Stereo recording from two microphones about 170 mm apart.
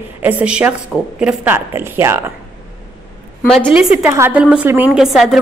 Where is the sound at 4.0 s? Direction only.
15° right (ahead or behind).